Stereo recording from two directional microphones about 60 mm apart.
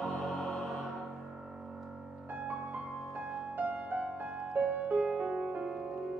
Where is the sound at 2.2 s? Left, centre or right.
Right.